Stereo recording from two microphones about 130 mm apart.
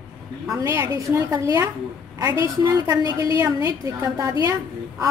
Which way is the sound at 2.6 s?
25° right (ahead or behind).